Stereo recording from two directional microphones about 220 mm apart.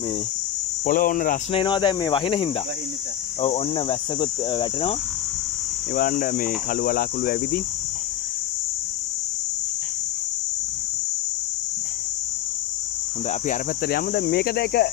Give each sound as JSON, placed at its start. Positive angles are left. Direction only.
{"t": 0.8, "sound": "speech", "side_deg": 40}
{"t": 1.5, "sound": "cricket", "side_deg": 20}
{"t": 5.9, "sound": "speech", "side_deg": 40}
{"t": 13.3, "sound": "speech", "side_deg": 40}